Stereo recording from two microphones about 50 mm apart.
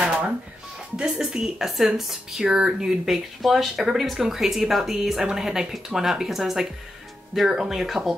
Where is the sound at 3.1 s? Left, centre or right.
Centre.